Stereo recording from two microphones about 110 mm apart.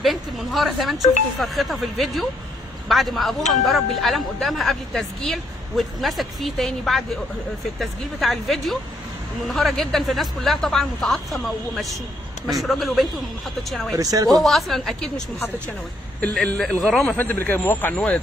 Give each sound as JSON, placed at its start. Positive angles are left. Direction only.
{"t": 0.0, "sound": "speech", "side_deg": 0}
{"t": 13.9, "sound": "speech", "side_deg": -35}
{"t": 14.4, "sound": "a man's voice", "side_deg": 0}
{"t": 17.2, "sound": "a man's voice", "side_deg": 15}